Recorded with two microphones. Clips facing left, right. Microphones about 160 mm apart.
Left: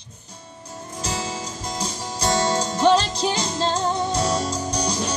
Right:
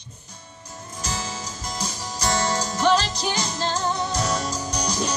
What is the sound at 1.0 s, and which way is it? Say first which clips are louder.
Music: left 3 dB; 30° left (ahead or behind).